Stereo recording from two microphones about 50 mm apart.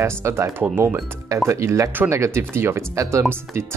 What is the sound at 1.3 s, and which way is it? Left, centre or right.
Speech, right.